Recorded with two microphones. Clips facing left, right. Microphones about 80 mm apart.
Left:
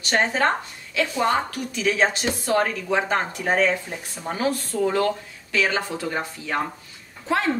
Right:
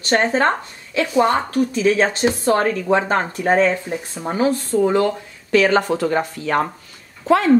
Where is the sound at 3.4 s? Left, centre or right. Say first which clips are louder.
Right 6 dB; right.